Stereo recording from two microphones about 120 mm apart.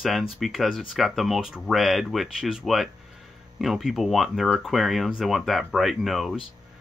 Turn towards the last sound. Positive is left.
turn(degrees=0)  # may be behind; listen again after turning